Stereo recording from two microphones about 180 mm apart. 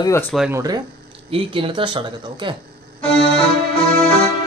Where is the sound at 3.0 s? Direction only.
30° left (ahead or behind).